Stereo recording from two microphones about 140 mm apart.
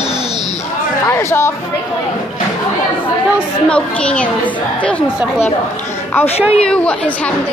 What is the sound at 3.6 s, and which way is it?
A woman's voice, 10° left (ahead or behind).